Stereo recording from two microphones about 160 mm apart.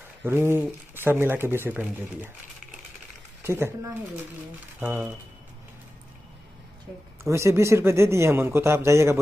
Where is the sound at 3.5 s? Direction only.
15° right (ahead or behind).